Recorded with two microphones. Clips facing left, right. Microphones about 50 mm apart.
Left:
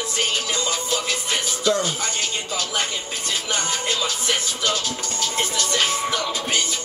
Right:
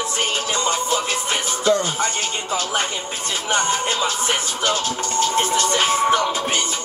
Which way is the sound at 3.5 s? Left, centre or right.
Right.